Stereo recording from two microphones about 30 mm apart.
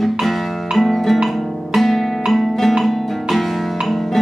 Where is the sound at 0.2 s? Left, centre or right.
Centre.